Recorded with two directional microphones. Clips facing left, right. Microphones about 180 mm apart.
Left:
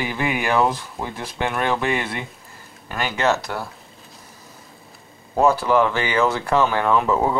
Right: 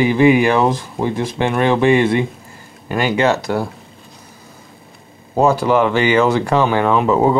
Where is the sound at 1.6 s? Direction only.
30° right (ahead or behind).